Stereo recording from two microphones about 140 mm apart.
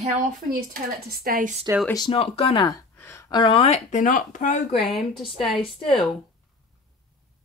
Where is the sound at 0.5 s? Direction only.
90° right.